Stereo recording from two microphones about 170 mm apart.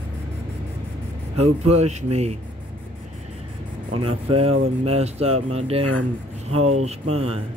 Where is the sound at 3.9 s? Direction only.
35° right (ahead or behind).